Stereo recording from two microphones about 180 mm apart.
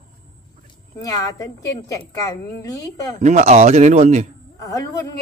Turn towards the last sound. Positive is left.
turn(degrees=20)  # may be behind; listen again after turning